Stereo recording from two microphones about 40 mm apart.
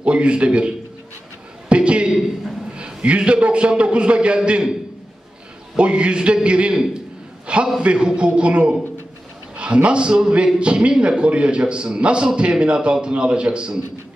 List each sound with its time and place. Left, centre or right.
0.0 s a man's voice: right
1.7 s a sound: right
2.7 s a man's voice: right
5.8 s a man's voice: right